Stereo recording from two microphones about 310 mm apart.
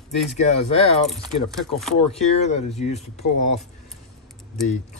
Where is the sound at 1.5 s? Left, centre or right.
Centre.